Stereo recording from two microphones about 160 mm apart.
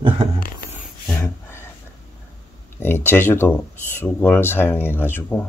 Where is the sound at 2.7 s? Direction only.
15° left (ahead or behind).